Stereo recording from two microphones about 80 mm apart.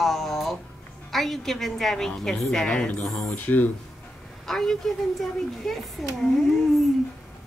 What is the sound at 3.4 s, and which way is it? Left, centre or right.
Speech, left.